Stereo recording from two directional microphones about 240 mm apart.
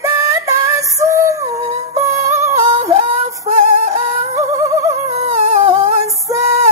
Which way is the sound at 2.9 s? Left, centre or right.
Right.